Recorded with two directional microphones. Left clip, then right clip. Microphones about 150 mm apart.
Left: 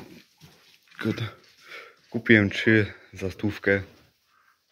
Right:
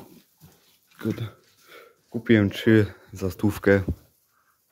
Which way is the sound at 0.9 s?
5° right (ahead or behind).